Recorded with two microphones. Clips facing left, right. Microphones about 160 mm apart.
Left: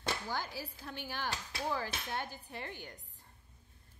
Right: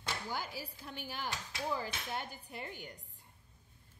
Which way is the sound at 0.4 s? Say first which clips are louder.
Left 1 dB; 10° right (ahead or behind).